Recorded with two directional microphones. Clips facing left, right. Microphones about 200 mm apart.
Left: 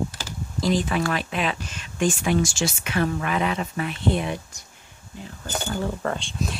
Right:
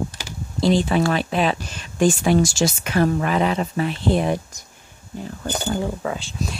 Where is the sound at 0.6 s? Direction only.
30° right (ahead or behind).